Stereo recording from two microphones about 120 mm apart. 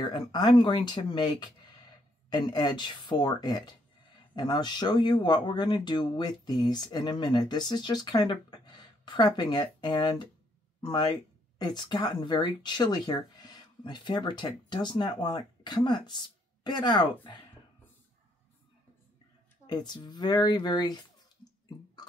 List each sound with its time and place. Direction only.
0.1 s speech: 40° left (ahead or behind)
19.6 s speech: 35° left (ahead or behind)